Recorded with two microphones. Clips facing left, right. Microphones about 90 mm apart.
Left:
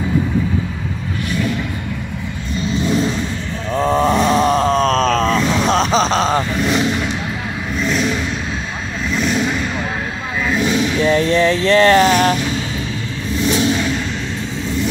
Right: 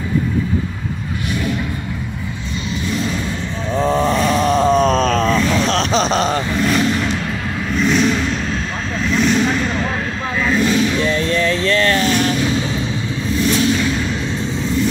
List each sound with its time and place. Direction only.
3.7 s roaring cats: 15° left (ahead or behind)
4.5 s groan: 5° right (ahead or behind)
5.4 s vehicle: 15° left (ahead or behind)
6.0 s a sound: 5° right (ahead or behind)
6.3 s roar: 20° left (ahead or behind)
7.8 s vehicle: centre (ahead or behind)
11.3 s a sound: 30° left (ahead or behind)
12.0 s vehicle: 60° left (ahead or behind)